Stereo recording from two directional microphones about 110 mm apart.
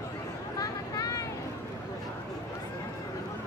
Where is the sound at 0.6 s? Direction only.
30° left (ahead or behind).